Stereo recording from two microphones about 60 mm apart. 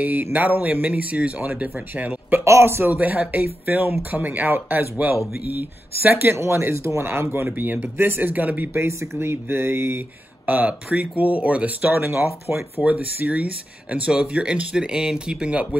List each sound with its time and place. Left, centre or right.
0.0 s speech: right
2.4 s speech: right
6.3 s speech: right
7.4 s speech: right
8.7 s speech: right
10.7 s speech: centre; by 12.5 s right
12.8 s speech: right